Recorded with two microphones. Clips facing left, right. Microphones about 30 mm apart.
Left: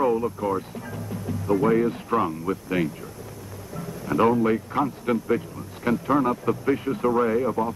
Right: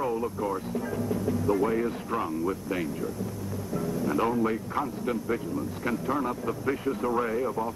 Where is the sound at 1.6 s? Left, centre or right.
Left.